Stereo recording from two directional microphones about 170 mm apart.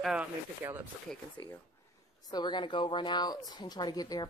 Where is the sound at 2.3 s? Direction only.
25° left (ahead or behind).